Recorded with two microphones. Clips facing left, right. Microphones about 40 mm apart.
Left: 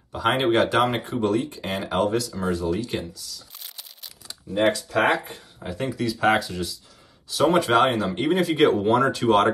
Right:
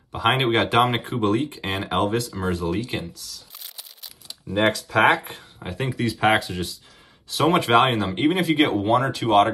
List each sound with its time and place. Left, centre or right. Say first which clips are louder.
0.1 s speech: right 1 dB; right
3.5 s camera: even; centre
5.2 s speech: even; right; by 9.5 s centre